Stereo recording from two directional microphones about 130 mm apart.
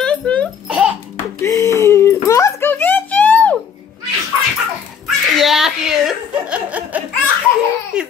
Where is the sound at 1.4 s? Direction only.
25° left (ahead or behind).